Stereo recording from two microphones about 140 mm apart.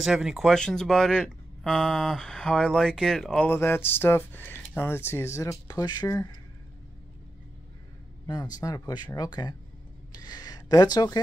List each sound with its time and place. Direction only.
0.0 s speech: 5° right (ahead or behind)
3.4 s speech: 15° left (ahead or behind)
8.5 s speech: 25° left (ahead or behind)
10.2 s a sound: 30° left (ahead or behind)